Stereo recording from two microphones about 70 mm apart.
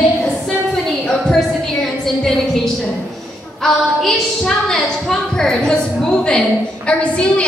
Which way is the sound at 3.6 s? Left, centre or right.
Centre.